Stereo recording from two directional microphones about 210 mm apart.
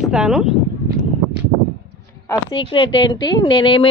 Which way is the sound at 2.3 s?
20° left (ahead or behind).